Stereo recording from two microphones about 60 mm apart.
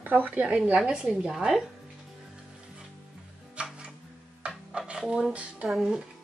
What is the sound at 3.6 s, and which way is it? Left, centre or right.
Music, centre.